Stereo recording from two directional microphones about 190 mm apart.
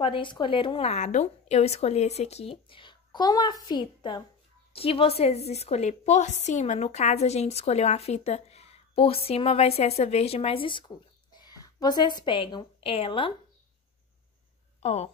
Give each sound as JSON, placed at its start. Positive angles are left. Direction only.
{"t": 0.0, "sound": "a woman's voice", "side_deg": 25}
{"t": 14.8, "sound": "speech", "side_deg": 35}